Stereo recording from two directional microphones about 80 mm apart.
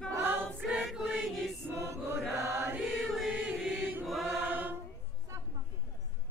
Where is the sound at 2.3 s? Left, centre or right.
Right.